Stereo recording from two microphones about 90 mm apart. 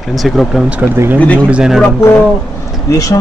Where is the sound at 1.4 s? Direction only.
10° right (ahead or behind).